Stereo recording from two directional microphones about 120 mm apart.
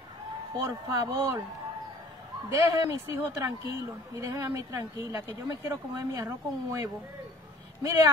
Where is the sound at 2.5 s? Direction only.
25° right (ahead or behind).